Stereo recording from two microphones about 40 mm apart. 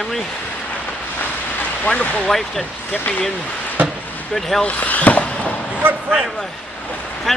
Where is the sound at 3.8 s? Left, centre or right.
Right.